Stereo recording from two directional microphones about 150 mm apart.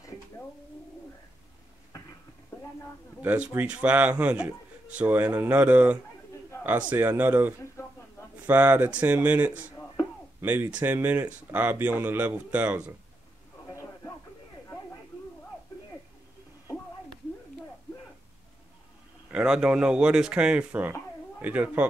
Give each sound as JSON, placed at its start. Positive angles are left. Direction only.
{"t": 3.2, "sound": "speech", "side_deg": -10}
{"t": 7.8, "sound": "a sound", "side_deg": 20}
{"t": 8.5, "sound": "speech", "side_deg": -10}
{"t": 19.3, "sound": "speech", "side_deg": -5}